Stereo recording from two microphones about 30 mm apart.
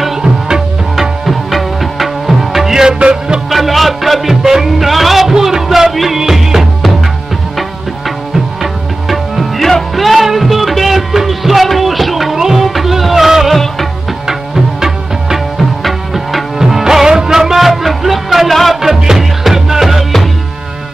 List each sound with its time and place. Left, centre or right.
0.9 s music: centre
2.7 s music: centre
3.0 s music: right
3.4 s music: centre
5.3 s music: centre
5.9 s music: centre
6.1 s music: centre
9.1 s music: centre
15.8 s music: centre
16.5 s music: centre
17.3 s a sound: centre
17.6 s music: centre
18.5 s music: centre
18.8 s music: centre